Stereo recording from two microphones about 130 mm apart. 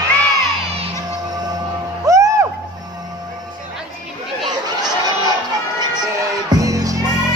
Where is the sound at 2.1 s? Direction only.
25° right (ahead or behind).